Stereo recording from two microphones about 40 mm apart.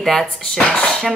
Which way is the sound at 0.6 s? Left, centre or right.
Centre.